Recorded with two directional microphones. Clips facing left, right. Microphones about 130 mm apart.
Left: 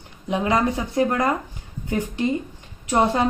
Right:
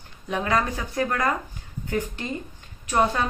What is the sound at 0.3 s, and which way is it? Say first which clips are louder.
A woman's voice: left 4 dB; 20° left (ahead or behind).